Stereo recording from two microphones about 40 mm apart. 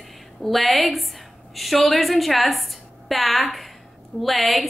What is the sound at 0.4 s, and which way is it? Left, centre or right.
A woman's voice, centre.